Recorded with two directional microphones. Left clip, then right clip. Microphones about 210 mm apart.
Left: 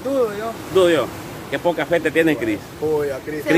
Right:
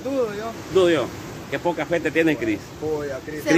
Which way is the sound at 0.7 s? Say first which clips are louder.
Left 3 dB; 5° left (ahead or behind).